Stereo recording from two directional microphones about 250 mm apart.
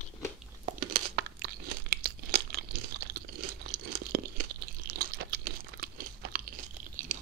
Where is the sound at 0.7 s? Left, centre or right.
Right.